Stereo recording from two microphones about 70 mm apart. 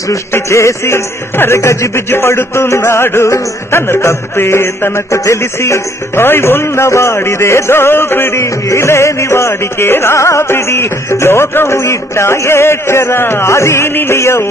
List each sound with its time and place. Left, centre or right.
0.1 s music: left